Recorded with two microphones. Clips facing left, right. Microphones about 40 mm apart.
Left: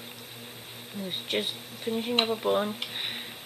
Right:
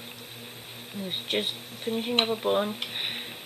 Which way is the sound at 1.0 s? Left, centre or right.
Centre.